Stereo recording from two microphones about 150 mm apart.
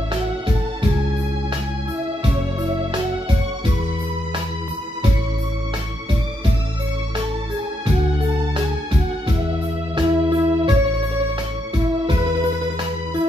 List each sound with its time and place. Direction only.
9.9 s organ: 40° right (ahead or behind)